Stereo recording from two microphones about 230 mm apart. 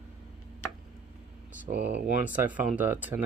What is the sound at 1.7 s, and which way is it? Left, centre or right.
Speech, right.